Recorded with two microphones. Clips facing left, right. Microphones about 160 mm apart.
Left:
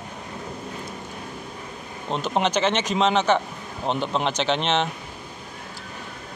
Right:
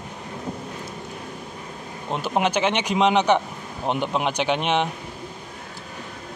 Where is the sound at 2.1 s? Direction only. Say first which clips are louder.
Even; 10° right (ahead or behind).